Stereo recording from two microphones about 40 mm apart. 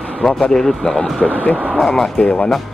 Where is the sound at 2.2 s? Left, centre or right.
Left.